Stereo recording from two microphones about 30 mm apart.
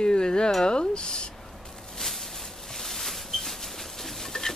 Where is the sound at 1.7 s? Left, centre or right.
Centre.